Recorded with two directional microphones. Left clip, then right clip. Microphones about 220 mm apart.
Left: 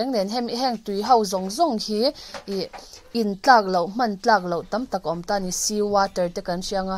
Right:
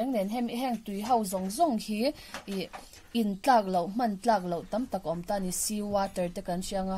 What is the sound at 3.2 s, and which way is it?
A woman's voice, 20° left (ahead or behind).